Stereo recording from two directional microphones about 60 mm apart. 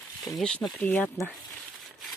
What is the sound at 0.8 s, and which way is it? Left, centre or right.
Speech, left.